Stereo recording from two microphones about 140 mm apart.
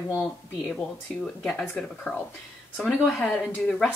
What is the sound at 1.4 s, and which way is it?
Speech, 5° left (ahead or behind).